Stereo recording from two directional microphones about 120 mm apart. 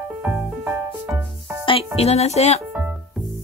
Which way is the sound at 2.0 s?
60° left (ahead or behind).